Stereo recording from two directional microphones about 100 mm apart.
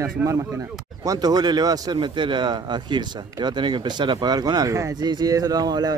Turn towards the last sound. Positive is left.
turn(degrees=-40)  # may be behind; listen again after turning